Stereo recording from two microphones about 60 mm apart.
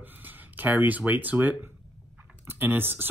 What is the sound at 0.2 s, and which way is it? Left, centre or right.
Speech, right.